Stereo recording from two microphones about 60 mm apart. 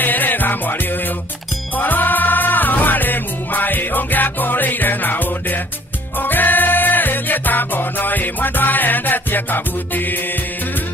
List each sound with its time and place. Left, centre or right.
0.0 s music: left
1.8 s music: left